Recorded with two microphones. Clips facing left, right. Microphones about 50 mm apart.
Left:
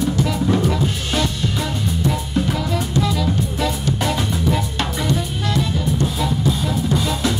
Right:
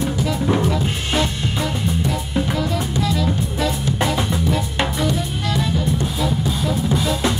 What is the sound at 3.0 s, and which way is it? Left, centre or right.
Music, centre.